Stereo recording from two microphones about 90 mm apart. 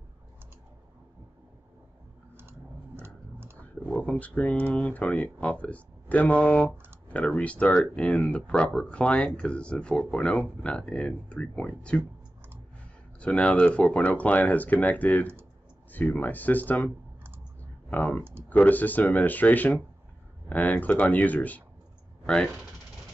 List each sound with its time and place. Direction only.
3.0 s a sound: 25° right (ahead or behind)
3.9 s speech: 15° left (ahead or behind)
13.2 s speech: 15° left (ahead or behind)